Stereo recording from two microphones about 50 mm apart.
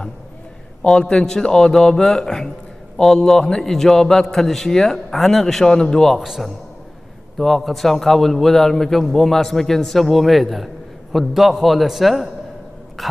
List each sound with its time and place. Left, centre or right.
0.8 s a man's voice: centre
6.1 s a man's voice: centre